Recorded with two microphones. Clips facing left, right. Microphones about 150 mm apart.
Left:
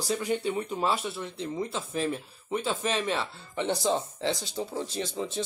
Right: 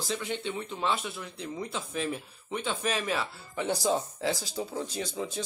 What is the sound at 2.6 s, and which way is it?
Speech, centre (ahead or behind).